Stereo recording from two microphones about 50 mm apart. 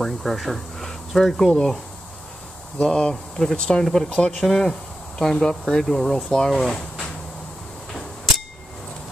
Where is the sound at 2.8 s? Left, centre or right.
Centre.